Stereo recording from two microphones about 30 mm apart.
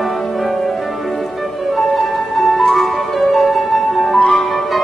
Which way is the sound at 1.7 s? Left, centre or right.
Centre.